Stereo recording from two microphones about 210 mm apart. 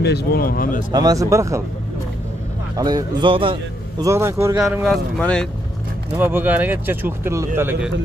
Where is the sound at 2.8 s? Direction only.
20° right (ahead or behind).